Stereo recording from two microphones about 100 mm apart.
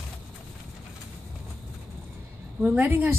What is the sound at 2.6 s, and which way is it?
Speech, 15° right (ahead or behind).